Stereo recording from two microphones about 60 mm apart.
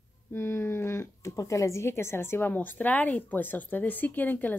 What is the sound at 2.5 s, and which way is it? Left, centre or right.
Speech, left.